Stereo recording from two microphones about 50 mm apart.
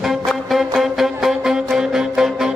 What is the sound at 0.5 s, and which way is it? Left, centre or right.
Music, centre.